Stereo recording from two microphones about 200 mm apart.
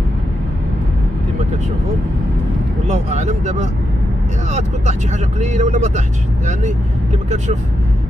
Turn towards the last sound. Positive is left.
turn(degrees=-35)  # may be behind; listen again after turning